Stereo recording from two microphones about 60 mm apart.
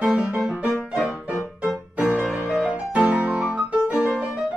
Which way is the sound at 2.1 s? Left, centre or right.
Centre.